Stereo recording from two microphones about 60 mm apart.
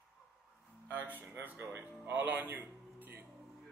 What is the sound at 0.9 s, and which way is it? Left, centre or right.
Speech, right.